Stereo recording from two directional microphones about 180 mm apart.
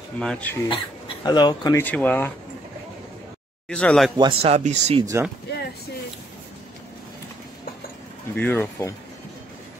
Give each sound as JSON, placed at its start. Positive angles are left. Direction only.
{"t": 0.2, "sound": "speech", "side_deg": 5}
{"t": 0.7, "sound": "speech", "side_deg": 25}
{"t": 3.6, "sound": "speech", "side_deg": 5}
{"t": 4.2, "sound": "speech", "side_deg": -30}
{"t": 8.4, "sound": "speech", "side_deg": 10}